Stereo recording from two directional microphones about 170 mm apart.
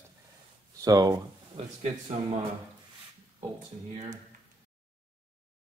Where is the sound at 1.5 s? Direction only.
40° right (ahead or behind).